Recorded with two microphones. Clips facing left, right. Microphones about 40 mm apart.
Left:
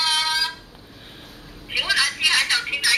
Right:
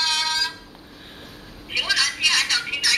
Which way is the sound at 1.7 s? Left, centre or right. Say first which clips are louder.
Left 1 dB; centre.